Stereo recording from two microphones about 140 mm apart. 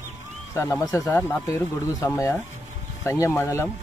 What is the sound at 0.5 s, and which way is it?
A man's voice, 20° left (ahead or behind).